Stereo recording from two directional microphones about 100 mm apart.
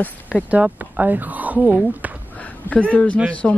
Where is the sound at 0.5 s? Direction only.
10° right (ahead or behind).